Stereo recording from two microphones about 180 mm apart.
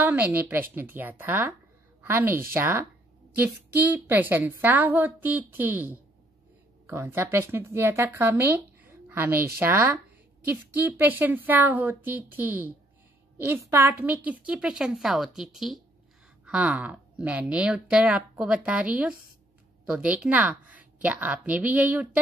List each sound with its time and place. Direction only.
0.0 s a woman's voice: 10° right (ahead or behind)